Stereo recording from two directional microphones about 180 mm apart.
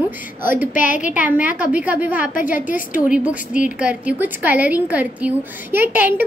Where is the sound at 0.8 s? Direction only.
45° left (ahead or behind).